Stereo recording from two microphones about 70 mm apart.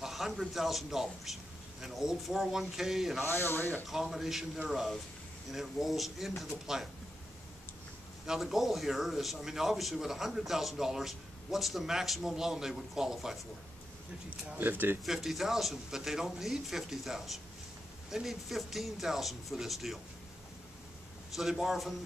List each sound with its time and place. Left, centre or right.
0.0 s a man's voice: centre
3.3 s speech: left
3.8 s a man's voice: centre
8.3 s a man's voice: centre
14.5 s speech: right
15.0 s a man's voice: centre
21.4 s a man's voice: centre